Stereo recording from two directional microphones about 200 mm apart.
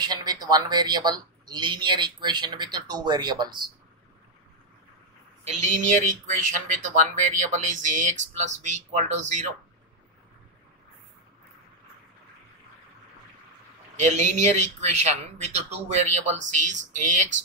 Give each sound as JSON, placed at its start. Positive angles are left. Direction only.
{"t": 0.0, "sound": "speech", "side_deg": -20}
{"t": 5.4, "sound": "speech", "side_deg": -35}
{"t": 13.9, "sound": "speech", "side_deg": -35}